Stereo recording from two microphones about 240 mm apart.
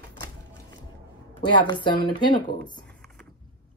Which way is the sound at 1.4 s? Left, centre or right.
Centre.